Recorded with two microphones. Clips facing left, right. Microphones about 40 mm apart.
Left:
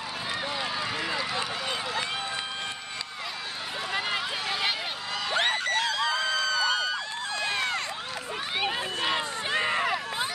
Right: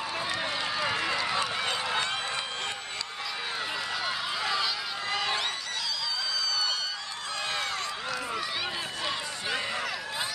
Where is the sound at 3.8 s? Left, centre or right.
Left.